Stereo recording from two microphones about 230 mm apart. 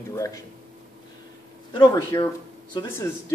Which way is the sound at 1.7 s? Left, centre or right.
Centre.